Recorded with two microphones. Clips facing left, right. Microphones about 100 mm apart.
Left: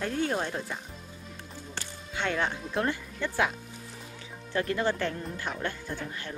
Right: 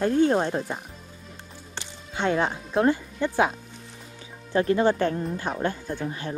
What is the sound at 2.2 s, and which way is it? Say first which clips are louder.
Speech: right 6 dB; 30° right (ahead or behind).